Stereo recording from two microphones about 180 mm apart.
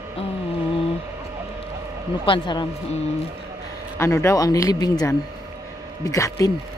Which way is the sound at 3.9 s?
15° left (ahead or behind).